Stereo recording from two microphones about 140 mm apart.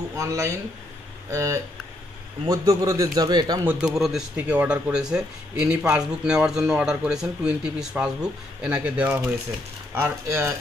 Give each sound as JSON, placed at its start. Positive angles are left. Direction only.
{"t": 0.1, "sound": "a man's voice", "side_deg": -25}
{"t": 3.8, "sound": "a man's voice", "side_deg": -5}